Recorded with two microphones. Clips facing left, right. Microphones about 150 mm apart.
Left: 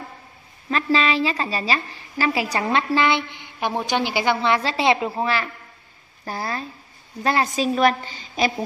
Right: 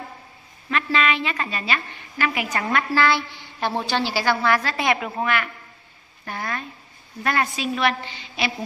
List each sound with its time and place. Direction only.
0.7 s a woman's voice: 30° left (ahead or behind)